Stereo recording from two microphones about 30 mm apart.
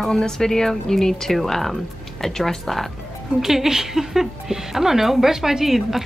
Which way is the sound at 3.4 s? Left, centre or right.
Centre.